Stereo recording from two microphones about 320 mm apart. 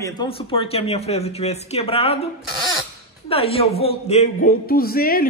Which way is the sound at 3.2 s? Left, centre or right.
Centre.